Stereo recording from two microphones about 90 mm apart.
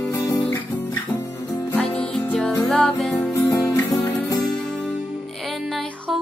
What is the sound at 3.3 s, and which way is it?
Music, 35° left (ahead or behind).